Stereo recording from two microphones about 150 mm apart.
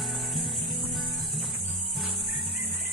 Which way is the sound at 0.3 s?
Centre (ahead or behind).